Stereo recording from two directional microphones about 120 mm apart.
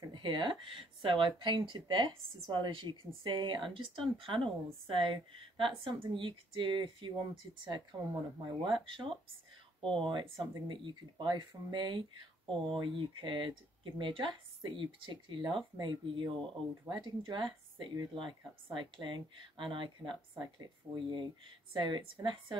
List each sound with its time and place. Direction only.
0.1 s speech: 40° right (ahead or behind)